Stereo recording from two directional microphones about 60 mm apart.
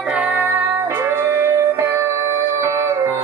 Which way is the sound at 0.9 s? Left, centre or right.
Right.